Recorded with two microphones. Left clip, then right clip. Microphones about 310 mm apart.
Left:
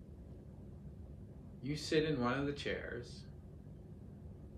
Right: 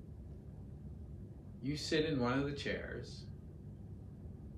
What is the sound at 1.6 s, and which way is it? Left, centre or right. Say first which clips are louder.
Speech: even; centre.